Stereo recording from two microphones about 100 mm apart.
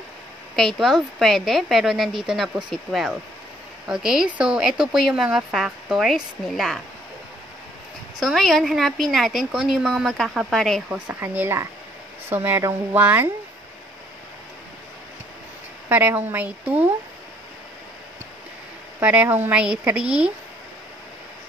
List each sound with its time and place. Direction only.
0.6 s a woman's voice: centre (ahead or behind)
8.2 s a woman's voice: centre (ahead or behind)
11.1 s speech: 25° right (ahead or behind)
15.9 s a woman's voice: 20° right (ahead or behind)
18.9 s a woman's voice: 15° right (ahead or behind)